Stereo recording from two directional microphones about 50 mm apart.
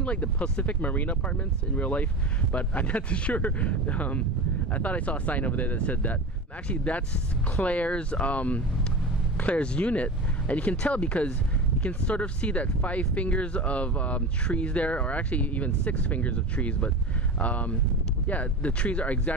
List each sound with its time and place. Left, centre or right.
0.0 s speech: left